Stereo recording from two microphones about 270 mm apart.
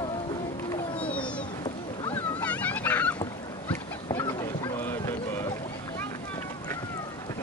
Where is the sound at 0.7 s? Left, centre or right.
Centre.